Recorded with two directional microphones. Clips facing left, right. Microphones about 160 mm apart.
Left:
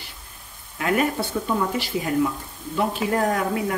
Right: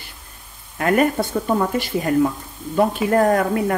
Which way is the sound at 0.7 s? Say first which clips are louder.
Right 5 dB; 50° right (ahead or behind).